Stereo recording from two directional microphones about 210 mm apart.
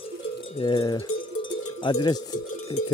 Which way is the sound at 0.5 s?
25° left (ahead or behind).